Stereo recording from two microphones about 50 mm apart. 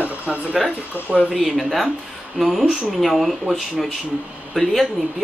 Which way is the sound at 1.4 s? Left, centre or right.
Centre.